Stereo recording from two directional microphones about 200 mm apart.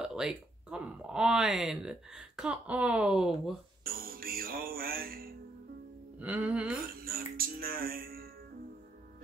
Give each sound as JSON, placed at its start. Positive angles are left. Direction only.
{"t": 0.0, "sound": "speech", "side_deg": -5}
{"t": 3.8, "sound": "music", "side_deg": -45}
{"t": 6.1, "sound": "music", "side_deg": -5}
{"t": 6.8, "sound": "music", "side_deg": -50}